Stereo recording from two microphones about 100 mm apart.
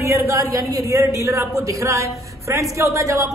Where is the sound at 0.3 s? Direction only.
35° right (ahead or behind).